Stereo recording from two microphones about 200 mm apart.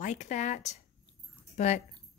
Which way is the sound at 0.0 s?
35° left (ahead or behind).